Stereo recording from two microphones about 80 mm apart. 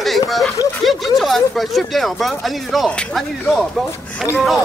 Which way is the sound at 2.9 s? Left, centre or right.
Centre.